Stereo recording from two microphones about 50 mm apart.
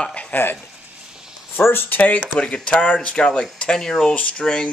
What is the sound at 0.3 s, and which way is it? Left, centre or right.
Stir, left.